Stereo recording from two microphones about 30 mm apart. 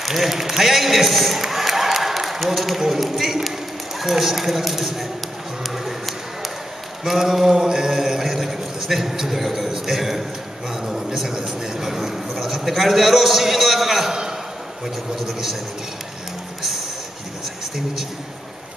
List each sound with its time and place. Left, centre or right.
0.1 s a man's voice: centre
7.1 s a man's voice: centre
10.9 s a man's voice: centre
15.1 s a man's voice: centre